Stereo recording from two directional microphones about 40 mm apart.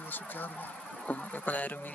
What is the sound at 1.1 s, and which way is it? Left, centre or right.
Insect, left.